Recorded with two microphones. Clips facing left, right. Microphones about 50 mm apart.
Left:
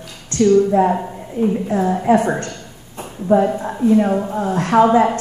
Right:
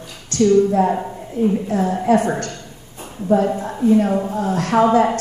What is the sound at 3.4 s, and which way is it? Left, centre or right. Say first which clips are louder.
Speech: even; centre.